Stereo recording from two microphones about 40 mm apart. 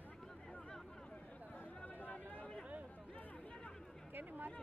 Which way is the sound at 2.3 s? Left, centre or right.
Left.